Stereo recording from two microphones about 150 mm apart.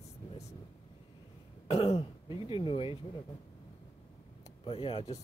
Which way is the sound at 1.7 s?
40° left (ahead or behind).